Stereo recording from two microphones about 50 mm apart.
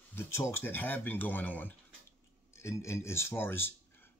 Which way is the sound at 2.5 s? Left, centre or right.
Left.